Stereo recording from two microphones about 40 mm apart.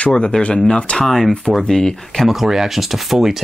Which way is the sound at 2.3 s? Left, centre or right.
Centre.